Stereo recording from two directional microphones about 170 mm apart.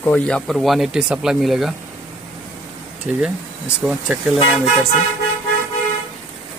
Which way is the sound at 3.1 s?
10° right (ahead or behind).